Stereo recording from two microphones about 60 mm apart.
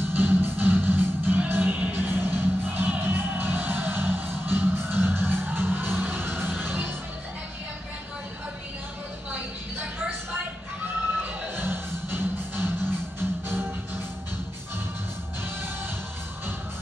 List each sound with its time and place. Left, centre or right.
0.1 s music: right
11.5 s music: right